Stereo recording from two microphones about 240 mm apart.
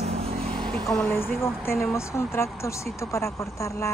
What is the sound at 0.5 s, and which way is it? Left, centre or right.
Speech, centre.